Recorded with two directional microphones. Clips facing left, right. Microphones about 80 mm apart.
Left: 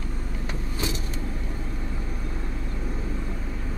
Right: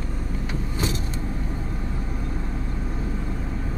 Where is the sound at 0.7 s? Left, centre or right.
Right.